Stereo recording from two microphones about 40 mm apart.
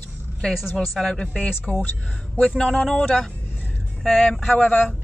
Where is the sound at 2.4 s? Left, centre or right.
Centre.